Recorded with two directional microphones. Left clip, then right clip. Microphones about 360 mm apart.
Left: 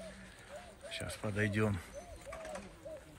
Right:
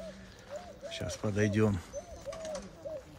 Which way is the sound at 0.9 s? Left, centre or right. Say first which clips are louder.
Right 4 dB; centre.